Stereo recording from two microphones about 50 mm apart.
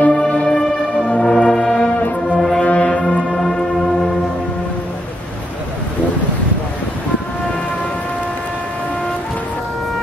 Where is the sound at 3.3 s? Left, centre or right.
Centre.